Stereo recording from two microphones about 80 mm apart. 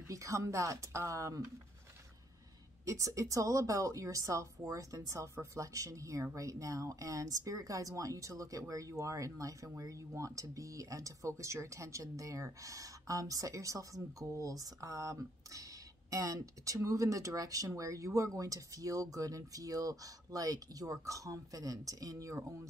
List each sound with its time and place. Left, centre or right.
0.1 s speech: right
2.8 s speech: right